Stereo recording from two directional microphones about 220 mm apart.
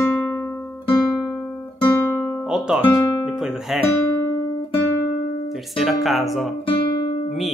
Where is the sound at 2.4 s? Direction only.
5° right (ahead or behind).